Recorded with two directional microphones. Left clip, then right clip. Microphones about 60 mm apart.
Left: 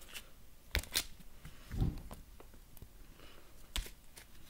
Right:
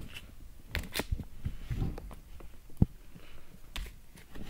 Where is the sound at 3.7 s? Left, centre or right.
Left.